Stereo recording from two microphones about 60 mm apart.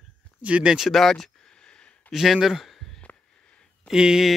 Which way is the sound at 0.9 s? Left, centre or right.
Centre.